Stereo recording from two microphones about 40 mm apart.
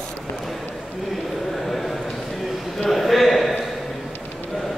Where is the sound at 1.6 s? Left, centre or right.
Centre.